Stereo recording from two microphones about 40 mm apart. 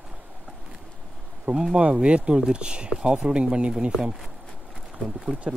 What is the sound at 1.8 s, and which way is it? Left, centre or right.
Speech, right.